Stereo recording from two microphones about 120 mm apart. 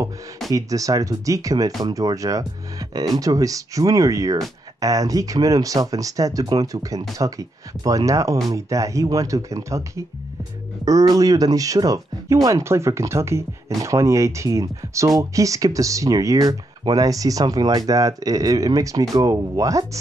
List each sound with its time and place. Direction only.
0.5 s speech: 30° right (ahead or behind)